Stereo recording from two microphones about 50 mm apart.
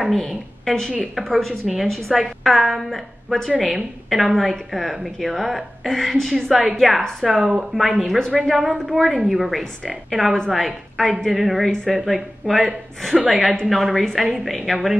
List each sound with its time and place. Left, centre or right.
0.1 s a woman's voice: centre
1.9 s a woman's voice: centre
6.5 s a woman's voice: right
6.8 s a woman's voice: centre
13.3 s a woman's voice: centre
13.7 s a woman's voice: centre